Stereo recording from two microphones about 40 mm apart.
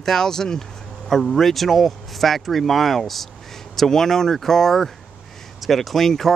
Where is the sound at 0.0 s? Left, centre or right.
Centre.